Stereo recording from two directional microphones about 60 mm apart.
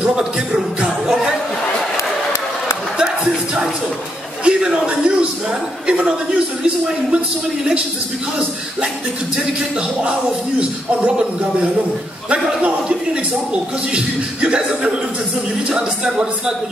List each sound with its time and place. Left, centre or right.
0.0 s music: centre
4.5 s a sound: centre
5.9 s chuckle: centre
12.3 s a man's voice: centre